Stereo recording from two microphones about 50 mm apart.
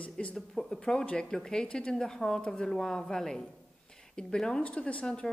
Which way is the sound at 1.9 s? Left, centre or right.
Centre.